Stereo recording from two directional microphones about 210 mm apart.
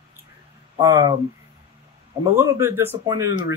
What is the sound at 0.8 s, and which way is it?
Speech, 15° right (ahead or behind).